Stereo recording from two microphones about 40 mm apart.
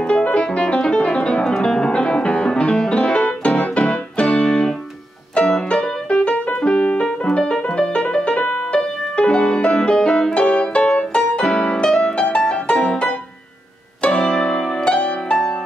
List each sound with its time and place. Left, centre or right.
0.0 s music: left
5.4 s piano: left
6.0 s music: left
9.8 s music: centre